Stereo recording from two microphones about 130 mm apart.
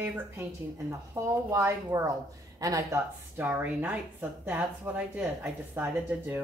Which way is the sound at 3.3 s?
15° right (ahead or behind).